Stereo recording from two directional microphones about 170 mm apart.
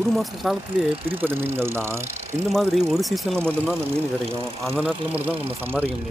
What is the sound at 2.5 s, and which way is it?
Speech, centre (ahead or behind).